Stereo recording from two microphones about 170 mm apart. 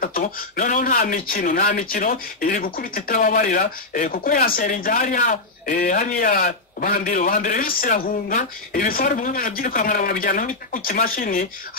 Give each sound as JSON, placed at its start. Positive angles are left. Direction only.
{"t": 0.0, "sound": "speech", "side_deg": 55}